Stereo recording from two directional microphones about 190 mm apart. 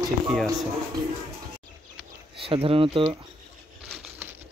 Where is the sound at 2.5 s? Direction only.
30° right (ahead or behind).